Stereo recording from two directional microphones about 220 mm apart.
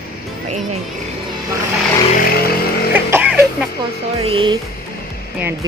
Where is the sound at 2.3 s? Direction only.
45° left (ahead or behind).